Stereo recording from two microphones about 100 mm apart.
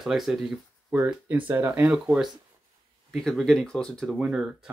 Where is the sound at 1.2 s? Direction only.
20° right (ahead or behind).